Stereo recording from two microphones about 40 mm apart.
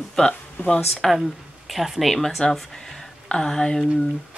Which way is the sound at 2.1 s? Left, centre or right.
Centre.